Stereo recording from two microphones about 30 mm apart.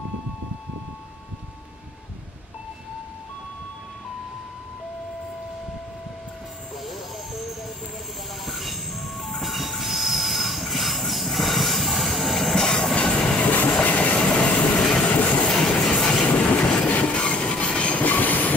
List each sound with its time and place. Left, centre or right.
6.8 s vehicle: centre
8.5 s train: centre
12.9 s train: left
13.8 s train: left
14.3 s train: left
14.8 s train: centre
16.3 s train: left
16.8 s train: left
17.2 s a sound: left
17.9 s train: left